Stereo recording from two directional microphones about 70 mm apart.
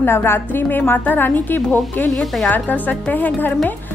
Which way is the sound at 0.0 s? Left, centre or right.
Left.